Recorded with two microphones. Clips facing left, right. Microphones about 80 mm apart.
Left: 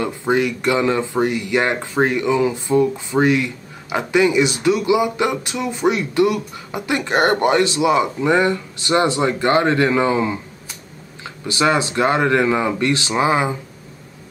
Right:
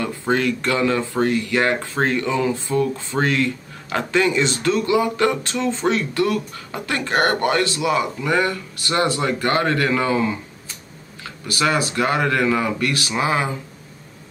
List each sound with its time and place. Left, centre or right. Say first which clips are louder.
0.0 s speech: left 2 dB; centre